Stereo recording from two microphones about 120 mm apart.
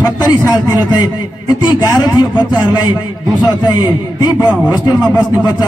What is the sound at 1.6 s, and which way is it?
A man's voice, 35° left (ahead or behind).